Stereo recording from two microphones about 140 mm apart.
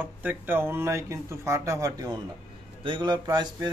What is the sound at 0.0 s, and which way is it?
Speech, 10° right (ahead or behind).